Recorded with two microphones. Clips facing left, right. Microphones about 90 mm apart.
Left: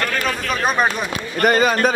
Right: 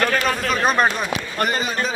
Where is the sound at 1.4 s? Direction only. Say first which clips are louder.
Left 9 dB; 55° left (ahead or behind).